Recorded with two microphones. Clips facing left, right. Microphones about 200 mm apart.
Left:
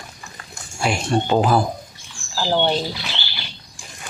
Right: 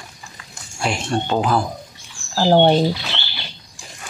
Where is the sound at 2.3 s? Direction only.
55° right (ahead or behind).